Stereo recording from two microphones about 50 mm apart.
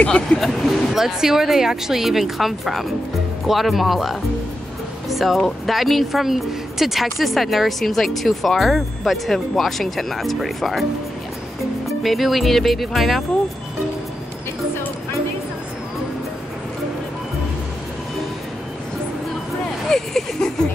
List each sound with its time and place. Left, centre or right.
0.0 s speech: left
0.4 s speech: centre
12.0 s speech: centre
19.9 s a sound: centre